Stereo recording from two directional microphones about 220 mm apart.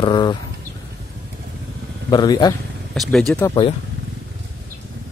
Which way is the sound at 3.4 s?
20° left (ahead or behind).